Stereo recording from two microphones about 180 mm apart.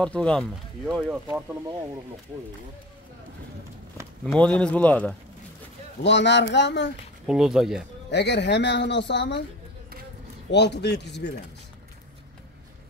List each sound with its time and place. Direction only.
0.0 s speech: 5° left (ahead or behind)
4.3 s speech: 5° left (ahead or behind)
6.0 s speech: 75° left (ahead or behind)
7.2 s speech: 5° right (ahead or behind)
8.1 s speech: 75° left (ahead or behind)
10.5 s speech: 70° left (ahead or behind)